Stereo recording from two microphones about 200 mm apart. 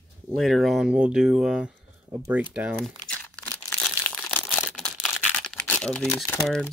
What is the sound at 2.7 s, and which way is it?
Crumpling, 5° left (ahead or behind).